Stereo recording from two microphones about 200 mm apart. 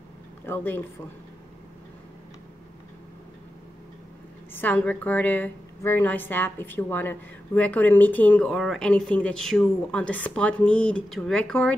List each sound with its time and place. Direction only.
0.5 s a woman's voice: 10° left (ahead or behind)
4.6 s a woman's voice: 10° left (ahead or behind)